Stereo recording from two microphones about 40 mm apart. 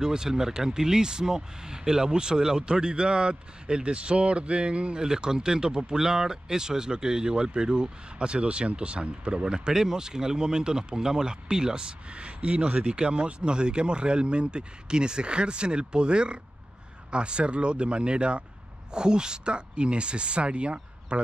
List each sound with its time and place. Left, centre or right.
0.0 s speech: centre